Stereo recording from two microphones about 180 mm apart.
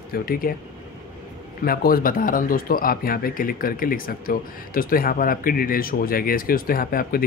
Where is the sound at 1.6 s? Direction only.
55° left (ahead or behind).